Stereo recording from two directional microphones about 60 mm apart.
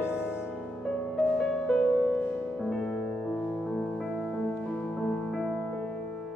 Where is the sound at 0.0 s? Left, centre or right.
Left.